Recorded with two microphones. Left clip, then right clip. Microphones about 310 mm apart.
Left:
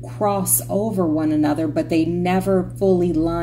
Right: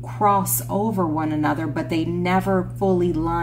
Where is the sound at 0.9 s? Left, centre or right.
Centre.